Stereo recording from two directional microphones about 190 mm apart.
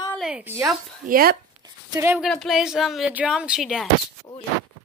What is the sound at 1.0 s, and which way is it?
Speech, 50° right (ahead or behind).